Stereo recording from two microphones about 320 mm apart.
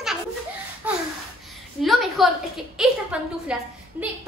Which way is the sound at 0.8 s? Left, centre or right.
Centre.